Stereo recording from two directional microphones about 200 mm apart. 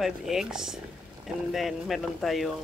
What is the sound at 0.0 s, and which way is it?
Speech, centre (ahead or behind).